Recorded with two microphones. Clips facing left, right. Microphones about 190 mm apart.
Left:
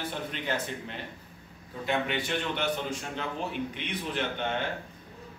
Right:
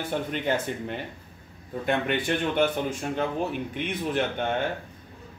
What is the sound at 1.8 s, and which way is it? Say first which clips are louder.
Speech: right 4 dB; 55° right (ahead or behind).